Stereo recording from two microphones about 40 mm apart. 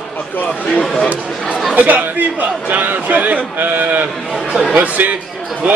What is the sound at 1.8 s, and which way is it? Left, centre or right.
A man's voice, right.